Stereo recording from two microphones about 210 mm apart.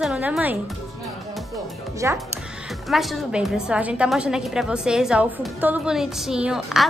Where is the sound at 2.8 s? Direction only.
Centre (ahead or behind).